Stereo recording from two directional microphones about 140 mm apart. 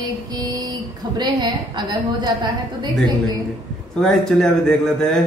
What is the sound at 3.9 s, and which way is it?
Speech, 5° left (ahead or behind).